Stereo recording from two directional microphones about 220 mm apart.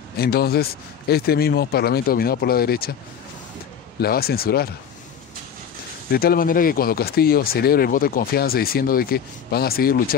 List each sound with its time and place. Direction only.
0.2 s speech: 45° left (ahead or behind)
4.0 s speech: 45° left (ahead or behind)
6.0 s speech: 45° left (ahead or behind)